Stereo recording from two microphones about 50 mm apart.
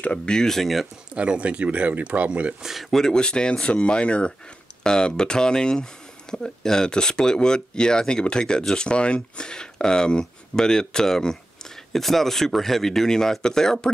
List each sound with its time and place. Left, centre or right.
0.0 s speech: left; by 0.8 s centre
1.1 s speech: right
2.6 s speech: centre
2.9 s speech: centre